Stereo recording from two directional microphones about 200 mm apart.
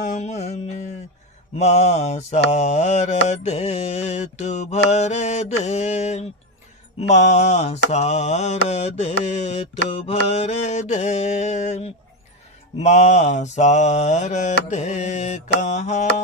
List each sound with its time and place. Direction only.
0.0 s music: 35° left (ahead or behind)
1.6 s mantra: 35° left (ahead or behind)